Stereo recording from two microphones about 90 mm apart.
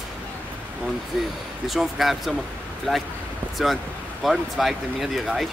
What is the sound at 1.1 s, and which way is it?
Speech, centre (ahead or behind).